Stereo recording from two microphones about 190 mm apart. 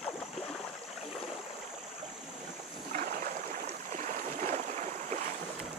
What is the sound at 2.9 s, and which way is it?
Boat, 45° right (ahead or behind).